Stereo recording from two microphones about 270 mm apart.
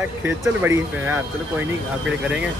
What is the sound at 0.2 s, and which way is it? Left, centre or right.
Speech, centre.